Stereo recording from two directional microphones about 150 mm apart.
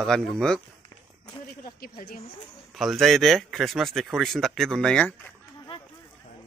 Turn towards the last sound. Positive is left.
turn(degrees=35)  # may be behind; listen again after turning